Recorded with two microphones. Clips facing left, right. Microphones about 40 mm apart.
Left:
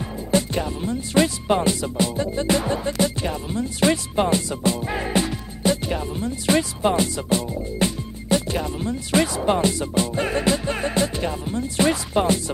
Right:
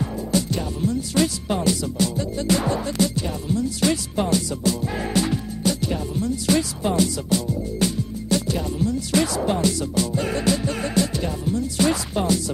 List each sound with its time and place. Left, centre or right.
0.3 s music: left